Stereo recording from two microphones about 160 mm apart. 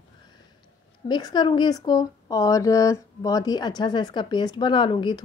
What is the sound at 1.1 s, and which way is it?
Speech, 25° left (ahead or behind).